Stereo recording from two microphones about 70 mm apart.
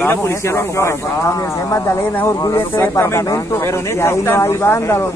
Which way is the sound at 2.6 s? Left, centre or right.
Left.